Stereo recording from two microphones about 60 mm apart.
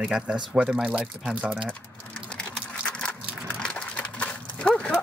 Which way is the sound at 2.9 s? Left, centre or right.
Centre.